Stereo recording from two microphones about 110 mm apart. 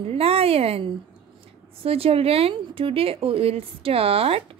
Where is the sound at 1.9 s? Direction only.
60° right (ahead or behind).